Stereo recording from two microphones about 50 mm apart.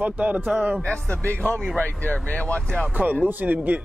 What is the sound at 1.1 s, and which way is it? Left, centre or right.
Speech, left.